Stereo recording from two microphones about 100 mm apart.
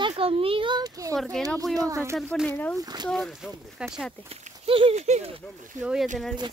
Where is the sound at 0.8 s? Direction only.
35° right (ahead or behind).